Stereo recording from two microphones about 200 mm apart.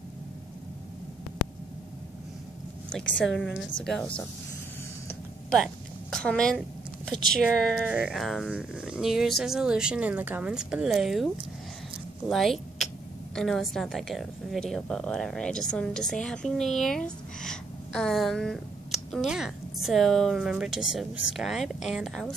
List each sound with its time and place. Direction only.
3.3 s a woman's voice: centre (ahead or behind)
5.5 s a woman's voice: centre (ahead or behind)
12.3 s a woman's voice: centre (ahead or behind)